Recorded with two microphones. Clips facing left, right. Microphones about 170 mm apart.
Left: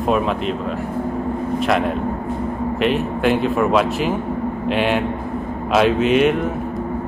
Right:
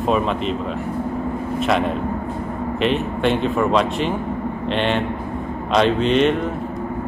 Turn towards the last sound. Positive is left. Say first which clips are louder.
# left 1 dB
turn(degrees=5)  # may be behind; listen again after turning